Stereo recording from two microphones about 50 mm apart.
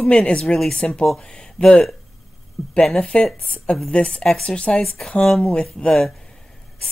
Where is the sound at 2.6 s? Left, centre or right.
Left.